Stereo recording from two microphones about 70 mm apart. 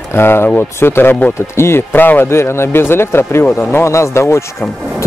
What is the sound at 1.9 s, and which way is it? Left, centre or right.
A man's voice, left.